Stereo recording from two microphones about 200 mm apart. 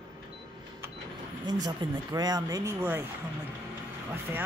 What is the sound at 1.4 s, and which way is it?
Speech, 20° right (ahead or behind).